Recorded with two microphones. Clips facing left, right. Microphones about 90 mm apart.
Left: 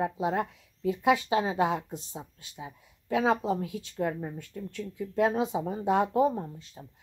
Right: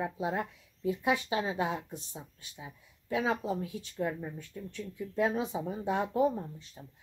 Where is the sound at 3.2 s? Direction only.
75° left (ahead or behind).